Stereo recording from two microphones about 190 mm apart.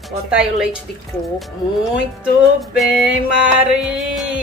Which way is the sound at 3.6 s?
5° right (ahead or behind).